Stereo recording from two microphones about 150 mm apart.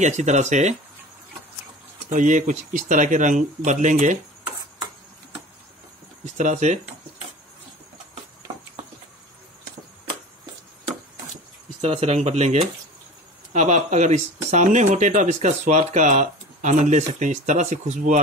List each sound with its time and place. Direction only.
0.0 s speech: 50° right (ahead or behind)
2.0 s speech: 60° right (ahead or behind)
6.3 s speech: 55° right (ahead or behind)
11.8 s speech: 45° right (ahead or behind)